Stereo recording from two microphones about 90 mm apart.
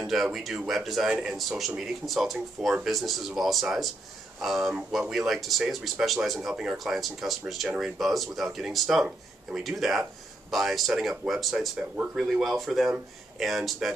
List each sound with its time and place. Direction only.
0.0 s speech: centre (ahead or behind)